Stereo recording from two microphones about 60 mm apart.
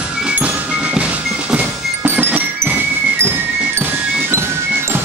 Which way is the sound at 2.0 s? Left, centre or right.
Right.